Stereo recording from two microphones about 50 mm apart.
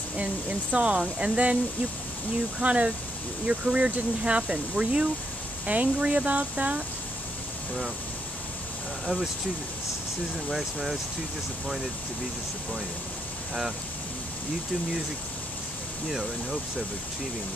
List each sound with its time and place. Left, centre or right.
0.1 s speech: right
2.6 s speech: right
10.5 s speech: centre
16.1 s speech: centre